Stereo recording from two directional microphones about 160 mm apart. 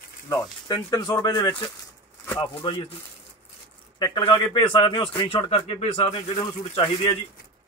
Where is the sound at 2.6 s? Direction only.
35° left (ahead or behind).